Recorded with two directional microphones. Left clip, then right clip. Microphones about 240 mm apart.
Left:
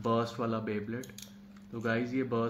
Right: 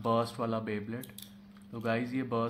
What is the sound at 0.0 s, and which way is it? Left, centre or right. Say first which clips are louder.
Speech: right 1 dB; right.